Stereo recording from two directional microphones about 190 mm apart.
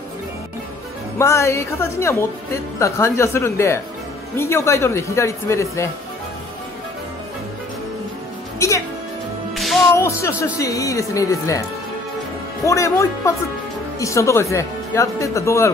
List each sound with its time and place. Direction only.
1.1 s speech: 15° left (ahead or behind)
8.5 s music: 15° left (ahead or behind)
9.6 s music: centre (ahead or behind)
10.0 s speech: 15° left (ahead or behind)
12.6 s speech: 15° left (ahead or behind)